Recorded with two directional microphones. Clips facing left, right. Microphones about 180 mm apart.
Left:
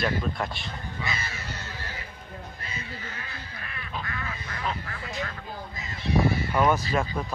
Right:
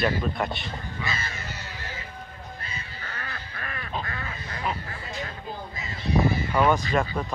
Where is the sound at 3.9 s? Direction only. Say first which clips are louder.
Even; 30° right (ahead or behind).